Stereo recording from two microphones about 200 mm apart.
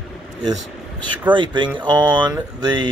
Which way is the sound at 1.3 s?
25° right (ahead or behind).